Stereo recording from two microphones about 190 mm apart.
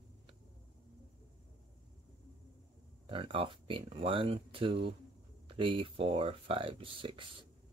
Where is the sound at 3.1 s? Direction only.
30° right (ahead or behind).